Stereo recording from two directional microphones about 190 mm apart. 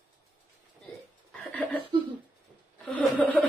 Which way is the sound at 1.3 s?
5° left (ahead or behind).